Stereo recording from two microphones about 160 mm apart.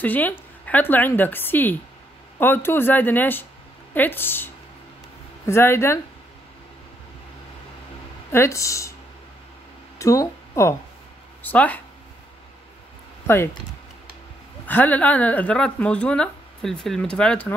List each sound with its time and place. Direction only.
0.0 s speech: 10° left (ahead or behind)
5.5 s speech: 15° left (ahead or behind)
8.3 s speech: 15° left (ahead or behind)
9.9 s speech: 20° left (ahead or behind)
14.7 s speech: 10° left (ahead or behind)